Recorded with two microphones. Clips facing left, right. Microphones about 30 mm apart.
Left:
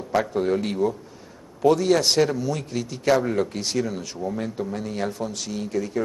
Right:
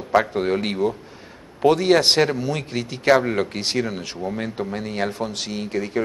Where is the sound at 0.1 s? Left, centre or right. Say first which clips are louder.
Right 3 dB; right.